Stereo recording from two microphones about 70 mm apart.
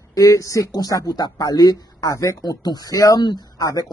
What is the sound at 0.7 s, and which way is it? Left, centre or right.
Speech, left.